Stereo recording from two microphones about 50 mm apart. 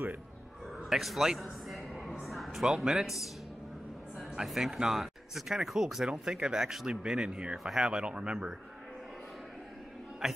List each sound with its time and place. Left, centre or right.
0.8 s a sound: centre
2.6 s speech: centre
4.5 s speech: centre
7.5 s speech: centre
7.8 s speech: centre
10.2 s a man's voice: centre